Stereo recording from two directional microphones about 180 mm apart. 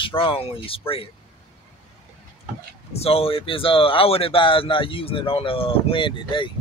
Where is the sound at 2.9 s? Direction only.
35° left (ahead or behind).